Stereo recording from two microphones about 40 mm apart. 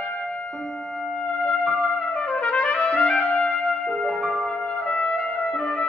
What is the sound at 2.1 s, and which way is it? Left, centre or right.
Trumpet, left.